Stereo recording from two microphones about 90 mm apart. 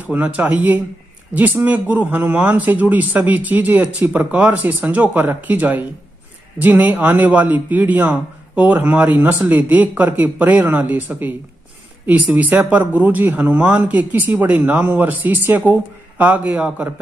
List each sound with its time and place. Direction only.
0.0 s a man's voice: 15° right (ahead or behind)